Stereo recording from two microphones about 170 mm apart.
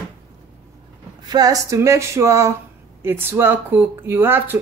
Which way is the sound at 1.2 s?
20° right (ahead or behind).